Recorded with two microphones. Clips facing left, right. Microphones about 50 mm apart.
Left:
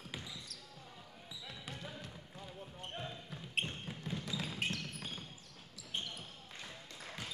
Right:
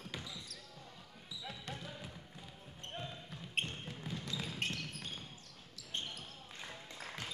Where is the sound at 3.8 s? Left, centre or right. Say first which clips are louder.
Left 1 dB; centre.